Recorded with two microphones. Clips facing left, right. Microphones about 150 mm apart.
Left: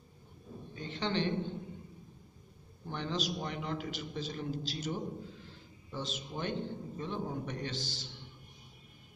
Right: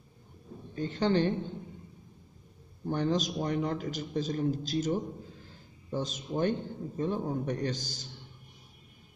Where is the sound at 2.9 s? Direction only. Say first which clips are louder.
Right 7 dB; 45° right (ahead or behind).